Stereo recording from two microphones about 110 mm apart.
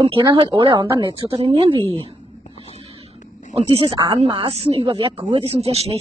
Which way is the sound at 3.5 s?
65° right (ahead or behind).